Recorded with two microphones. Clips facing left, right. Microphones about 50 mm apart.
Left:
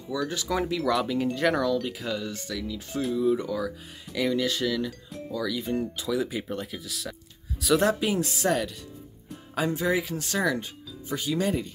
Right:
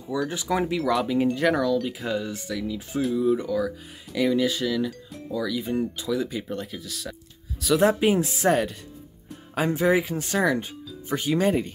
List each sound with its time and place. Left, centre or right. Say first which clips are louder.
0.3 s speech: right 2 dB; centre
0.7 s speech: right 2 dB; centre
2.0 s speech: right 3 dB; centre
7.8 s speech: right 4 dB; right
11.1 s speech: right 4 dB; right